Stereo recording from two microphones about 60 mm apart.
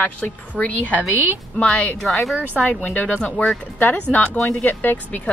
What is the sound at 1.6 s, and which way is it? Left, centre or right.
Speech, left.